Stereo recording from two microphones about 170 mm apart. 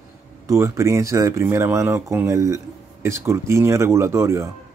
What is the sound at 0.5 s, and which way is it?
Speech, 15° right (ahead or behind).